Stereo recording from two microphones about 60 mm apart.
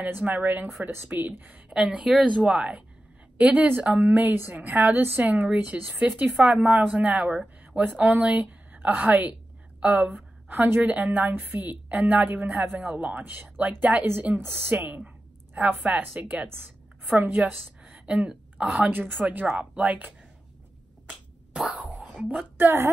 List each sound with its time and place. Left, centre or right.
0.0 s speech: right
1.7 s a woman's voice: centre
14.3 s a woman's voice: right
18.9 s a woman's voice: right
21.5 s cough: centre
22.6 s a woman's voice: right